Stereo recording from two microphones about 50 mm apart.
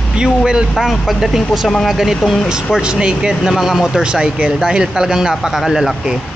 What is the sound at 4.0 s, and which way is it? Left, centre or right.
Speech, centre.